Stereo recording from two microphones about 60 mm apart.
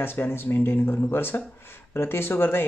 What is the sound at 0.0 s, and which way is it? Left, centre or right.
Speech, left.